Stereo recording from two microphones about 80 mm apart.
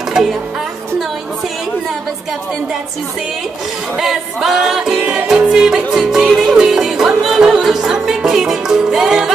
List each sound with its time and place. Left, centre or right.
0.1 s music: centre
4.0 s music: centre
4.9 s music: centre
5.3 s music: centre